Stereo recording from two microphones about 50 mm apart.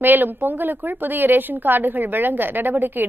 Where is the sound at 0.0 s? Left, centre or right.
Right.